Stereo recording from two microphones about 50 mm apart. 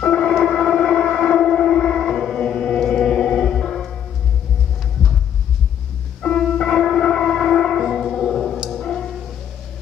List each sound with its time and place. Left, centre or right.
0.0 s a sound: centre
0.4 s civil defense siren: centre
6.3 s music: centre
7.0 s a sound: centre
7.8 s music: centre
8.8 s music: centre